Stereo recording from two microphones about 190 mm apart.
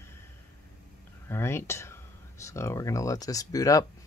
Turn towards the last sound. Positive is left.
turn(degrees=20)  # may be behind; listen again after turning